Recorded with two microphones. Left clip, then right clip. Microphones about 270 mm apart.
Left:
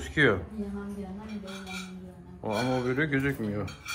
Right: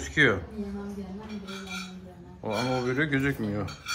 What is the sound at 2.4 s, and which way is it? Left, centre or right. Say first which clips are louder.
Speech: even; centre.